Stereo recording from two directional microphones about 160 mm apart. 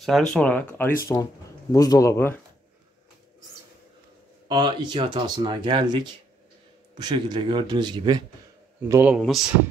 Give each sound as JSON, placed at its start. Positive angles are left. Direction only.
{"t": 0.0, "sound": "speech", "side_deg": 0}
{"t": 4.5, "sound": "speech", "side_deg": -30}
{"t": 8.8, "sound": "a man's voice", "side_deg": -15}